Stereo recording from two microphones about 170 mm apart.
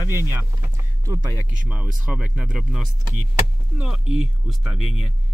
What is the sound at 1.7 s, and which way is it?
Speech, 5° right (ahead or behind).